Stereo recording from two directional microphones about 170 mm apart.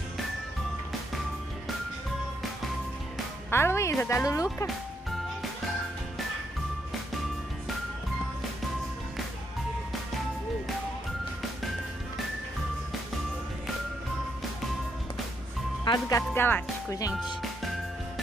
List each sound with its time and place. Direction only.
3.4 s speech: 15° left (ahead or behind)
15.8 s speech: 25° left (ahead or behind)